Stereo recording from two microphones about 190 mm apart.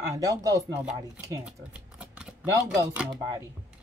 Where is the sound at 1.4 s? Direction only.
5° right (ahead or behind).